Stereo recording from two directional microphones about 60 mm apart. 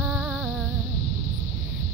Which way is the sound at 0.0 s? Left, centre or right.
Centre.